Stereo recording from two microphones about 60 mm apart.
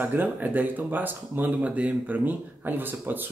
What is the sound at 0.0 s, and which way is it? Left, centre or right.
Speech, right.